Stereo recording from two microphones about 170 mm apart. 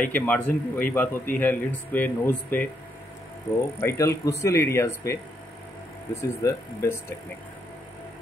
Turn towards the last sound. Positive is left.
turn(degrees=15)  # may be behind; listen again after turning